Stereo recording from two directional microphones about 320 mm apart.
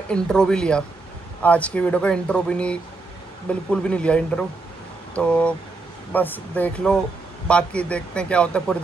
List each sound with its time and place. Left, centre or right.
0.1 s speech: centre